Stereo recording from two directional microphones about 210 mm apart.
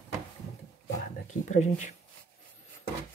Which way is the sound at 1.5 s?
35° left (ahead or behind).